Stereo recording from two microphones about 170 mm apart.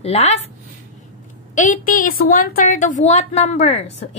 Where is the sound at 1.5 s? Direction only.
50° left (ahead or behind).